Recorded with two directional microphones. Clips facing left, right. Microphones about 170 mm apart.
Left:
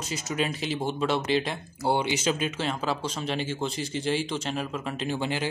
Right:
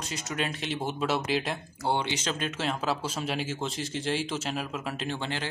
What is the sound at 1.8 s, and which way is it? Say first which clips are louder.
Speech: left 4 dB; 10° left (ahead or behind).